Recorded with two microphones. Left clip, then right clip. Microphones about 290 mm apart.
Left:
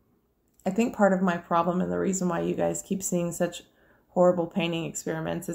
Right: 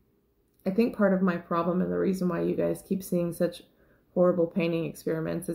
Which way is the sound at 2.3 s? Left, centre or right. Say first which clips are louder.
Left 2 dB; left.